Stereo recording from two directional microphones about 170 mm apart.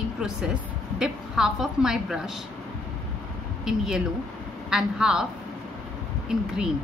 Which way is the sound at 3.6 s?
5° right (ahead or behind).